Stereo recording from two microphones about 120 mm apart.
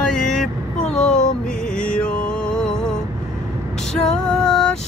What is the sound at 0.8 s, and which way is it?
Vehicle, 5° left (ahead or behind).